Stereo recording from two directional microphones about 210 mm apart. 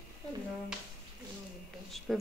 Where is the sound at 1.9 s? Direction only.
Centre (ahead or behind).